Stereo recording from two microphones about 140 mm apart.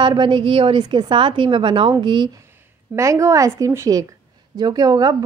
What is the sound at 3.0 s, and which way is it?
A woman's voice, 20° right (ahead or behind).